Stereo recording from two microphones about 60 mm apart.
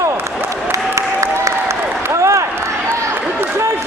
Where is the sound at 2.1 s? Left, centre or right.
Right.